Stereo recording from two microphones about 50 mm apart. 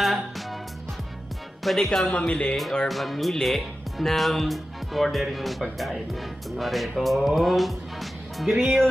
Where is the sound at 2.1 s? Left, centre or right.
Left.